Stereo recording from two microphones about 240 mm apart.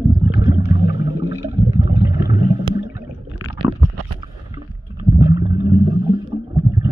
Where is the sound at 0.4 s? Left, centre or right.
Centre.